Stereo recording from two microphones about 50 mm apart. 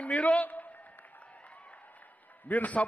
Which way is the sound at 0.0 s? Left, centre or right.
Left.